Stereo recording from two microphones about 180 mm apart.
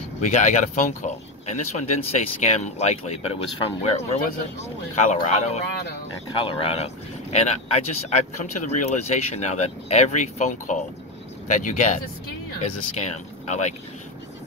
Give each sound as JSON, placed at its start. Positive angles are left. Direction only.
{"t": 0.2, "sound": "speech", "side_deg": 40}